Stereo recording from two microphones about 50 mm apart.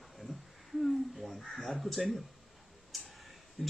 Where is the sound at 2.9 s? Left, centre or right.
Centre.